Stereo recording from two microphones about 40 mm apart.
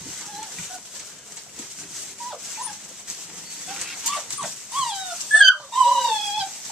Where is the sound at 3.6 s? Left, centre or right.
Centre.